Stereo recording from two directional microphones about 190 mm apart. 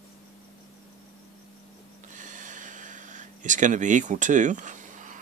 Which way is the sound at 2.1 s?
40° right (ahead or behind).